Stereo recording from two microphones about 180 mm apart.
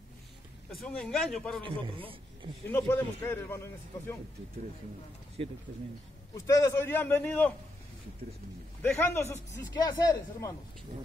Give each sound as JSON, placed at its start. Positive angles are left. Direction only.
{"t": 0.7, "sound": "speech", "side_deg": 5}
{"t": 1.6, "sound": "a man's voice", "side_deg": -30}
{"t": 2.7, "sound": "a man's voice", "side_deg": 10}
{"t": 5.4, "sound": "speech", "side_deg": -30}
{"t": 6.3, "sound": "a man's voice", "side_deg": 20}
{"t": 8.8, "sound": "a man's voice", "side_deg": 15}